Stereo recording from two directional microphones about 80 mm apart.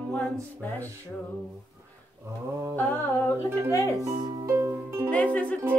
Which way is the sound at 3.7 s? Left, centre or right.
Left.